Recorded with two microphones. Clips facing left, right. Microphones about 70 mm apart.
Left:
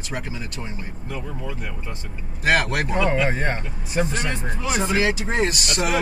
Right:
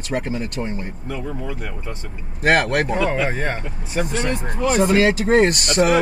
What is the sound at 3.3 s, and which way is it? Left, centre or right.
Speech, centre.